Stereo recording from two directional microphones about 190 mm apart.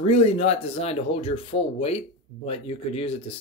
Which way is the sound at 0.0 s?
30° left (ahead or behind).